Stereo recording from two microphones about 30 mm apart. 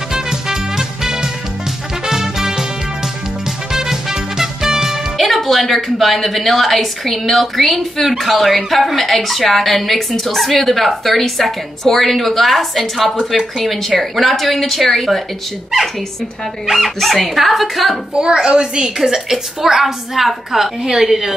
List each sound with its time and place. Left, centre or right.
0.1 s music: right
3.7 s music: centre
5.1 s a woman's voice: centre
16.7 s a woman's voice: centre
18.1 s a woman's voice: right
19.0 s a woman's voice: centre